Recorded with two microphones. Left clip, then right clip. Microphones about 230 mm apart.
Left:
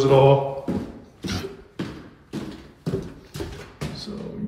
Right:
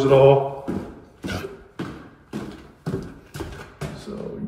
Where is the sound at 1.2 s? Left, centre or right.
Centre.